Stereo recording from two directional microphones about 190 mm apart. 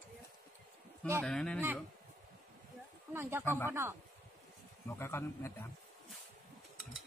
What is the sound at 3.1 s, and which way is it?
Speech, 10° right (ahead or behind).